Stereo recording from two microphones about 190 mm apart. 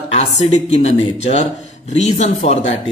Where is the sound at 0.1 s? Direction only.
35° left (ahead or behind).